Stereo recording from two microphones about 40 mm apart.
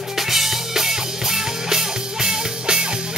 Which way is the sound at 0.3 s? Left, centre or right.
Centre.